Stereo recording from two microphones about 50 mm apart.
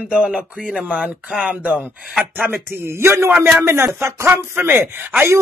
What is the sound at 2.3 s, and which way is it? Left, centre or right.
Speech, right.